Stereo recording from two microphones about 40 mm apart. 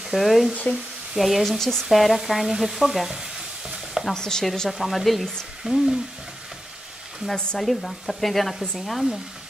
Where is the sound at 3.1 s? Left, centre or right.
Centre.